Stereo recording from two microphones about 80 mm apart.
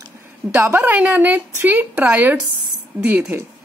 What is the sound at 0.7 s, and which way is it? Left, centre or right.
Speech, right.